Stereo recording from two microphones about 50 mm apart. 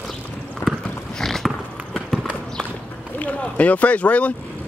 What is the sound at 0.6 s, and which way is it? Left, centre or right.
Clip-clop, left.